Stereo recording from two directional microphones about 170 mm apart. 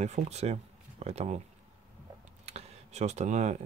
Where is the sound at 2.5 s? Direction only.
40° right (ahead or behind).